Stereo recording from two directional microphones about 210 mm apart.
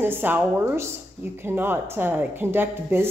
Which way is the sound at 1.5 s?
10° right (ahead or behind).